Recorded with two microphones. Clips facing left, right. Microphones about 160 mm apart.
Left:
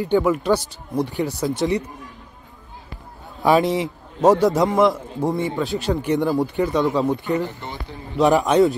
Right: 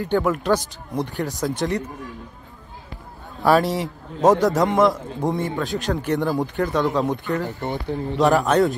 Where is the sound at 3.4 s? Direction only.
15° left (ahead or behind).